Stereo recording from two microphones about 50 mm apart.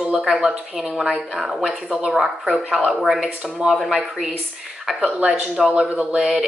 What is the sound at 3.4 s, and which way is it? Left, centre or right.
Speech, right.